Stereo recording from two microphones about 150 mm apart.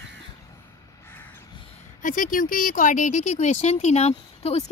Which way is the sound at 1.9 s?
60° left (ahead or behind).